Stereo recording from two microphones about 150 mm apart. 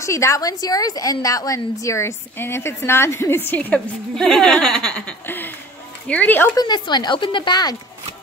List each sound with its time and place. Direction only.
0.0 s a woman's voice: 20° left (ahead or behind)
6.5 s a woman's voice: 30° left (ahead or behind)